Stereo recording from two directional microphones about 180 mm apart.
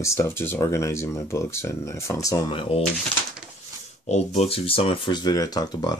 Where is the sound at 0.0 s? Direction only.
15° left (ahead or behind).